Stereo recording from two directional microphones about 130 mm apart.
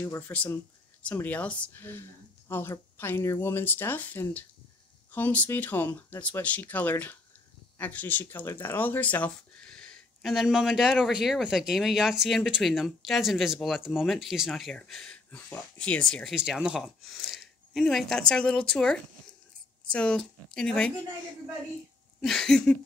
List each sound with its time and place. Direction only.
0.3 s speech: 10° left (ahead or behind)
16.3 s speech: 5° right (ahead or behind)
22.2 s speech: 5° left (ahead or behind)